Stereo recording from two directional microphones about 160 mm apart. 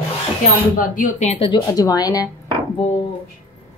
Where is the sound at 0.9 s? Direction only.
55° left (ahead or behind).